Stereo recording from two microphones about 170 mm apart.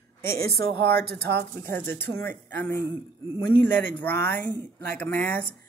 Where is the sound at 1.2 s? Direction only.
70° right (ahead or behind).